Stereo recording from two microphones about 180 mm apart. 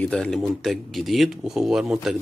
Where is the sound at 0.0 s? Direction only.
5° left (ahead or behind).